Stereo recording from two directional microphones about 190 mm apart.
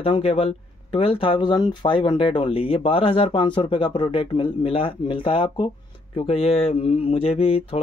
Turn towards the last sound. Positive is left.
turn(degrees=30)  # may be behind; listen again after turning